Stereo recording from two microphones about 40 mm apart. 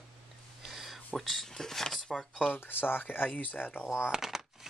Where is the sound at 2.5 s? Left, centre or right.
Left.